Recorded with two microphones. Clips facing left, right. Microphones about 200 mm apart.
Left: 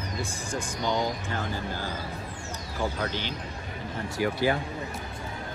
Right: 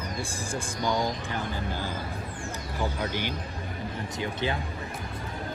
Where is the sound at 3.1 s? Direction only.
15° right (ahead or behind).